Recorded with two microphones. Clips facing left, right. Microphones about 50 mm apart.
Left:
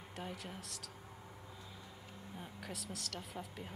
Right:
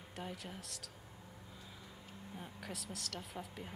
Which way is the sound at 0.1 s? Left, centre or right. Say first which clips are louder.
Even; centre.